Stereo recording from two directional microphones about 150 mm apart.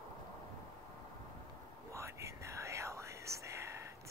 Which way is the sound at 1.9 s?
20° right (ahead or behind).